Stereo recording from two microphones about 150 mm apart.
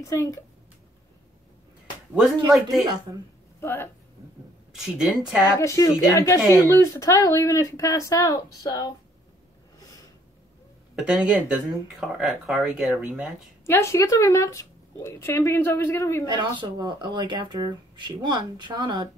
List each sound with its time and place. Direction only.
0.0 s speech: 20° left (ahead or behind)
2.5 s speech: centre (ahead or behind)
3.6 s speech: 15° left (ahead or behind)
4.7 s speech: 5° right (ahead or behind)
5.6 s speech: 20° left (ahead or behind)
11.0 s speech: 5° right (ahead or behind)
13.7 s speech: 20° left (ahead or behind)
16.3 s speech: 30° right (ahead or behind)